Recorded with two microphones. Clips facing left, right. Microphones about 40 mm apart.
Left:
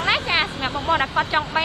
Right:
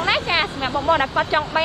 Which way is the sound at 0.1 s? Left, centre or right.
Left.